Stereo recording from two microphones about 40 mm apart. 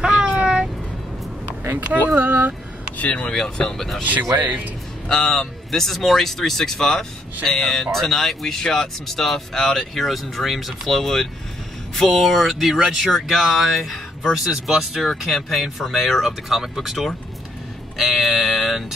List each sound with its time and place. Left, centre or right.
0.0 s a sound: centre
2.1 s speech: right
3.0 s speech: left
3.3 s speech: centre
4.4 s a man's voice: right
5.1 s speech: centre
17.9 s music: centre